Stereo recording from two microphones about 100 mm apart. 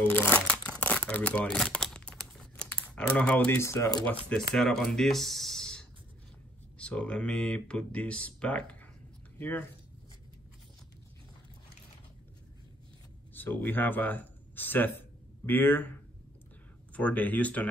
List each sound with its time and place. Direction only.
0.3 s crumpling: 10° left (ahead or behind)
3.6 s speech: 30° left (ahead or behind)
4.3 s speech: 5° left (ahead or behind); by 9.7 s 20° left (ahead or behind)
13.3 s speech: 20° left (ahead or behind)
16.9 s speech: 15° left (ahead or behind)